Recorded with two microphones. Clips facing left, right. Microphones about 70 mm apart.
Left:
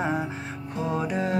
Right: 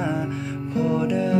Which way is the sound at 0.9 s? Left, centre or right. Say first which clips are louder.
Right 4 dB; left.